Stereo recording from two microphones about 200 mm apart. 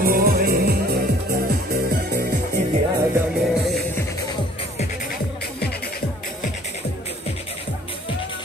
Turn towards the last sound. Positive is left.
turn(degrees=50)  # may be behind; listen again after turning